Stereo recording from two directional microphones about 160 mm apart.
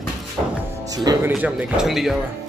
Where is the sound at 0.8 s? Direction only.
25° right (ahead or behind).